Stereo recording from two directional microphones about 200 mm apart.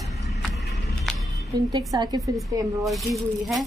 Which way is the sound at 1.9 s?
20° right (ahead or behind).